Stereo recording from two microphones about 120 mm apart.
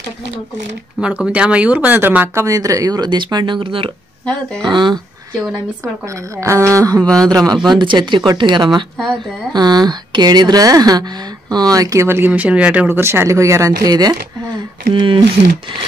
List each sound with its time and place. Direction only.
1.0 s speech: 10° right (ahead or behind); by 5.0 s 40° right (ahead or behind)
6.4 s speech: 25° right (ahead or behind)
7.1 s a man's voice: 5° left (ahead or behind)
7.3 s speech: 35° right (ahead or behind)